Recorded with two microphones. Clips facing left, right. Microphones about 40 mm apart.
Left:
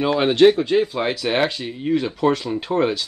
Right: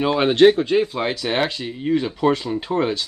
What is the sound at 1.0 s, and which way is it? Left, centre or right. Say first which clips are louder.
A man's voice: left 1 dB; centre.